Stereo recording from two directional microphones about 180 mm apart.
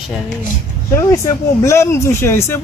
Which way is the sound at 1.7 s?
15° left (ahead or behind).